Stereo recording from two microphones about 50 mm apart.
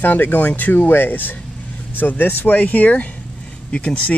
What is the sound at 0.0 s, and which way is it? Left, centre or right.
Speech, left.